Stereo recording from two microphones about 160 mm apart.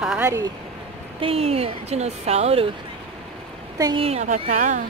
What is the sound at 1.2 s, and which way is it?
Speech, 40° right (ahead or behind).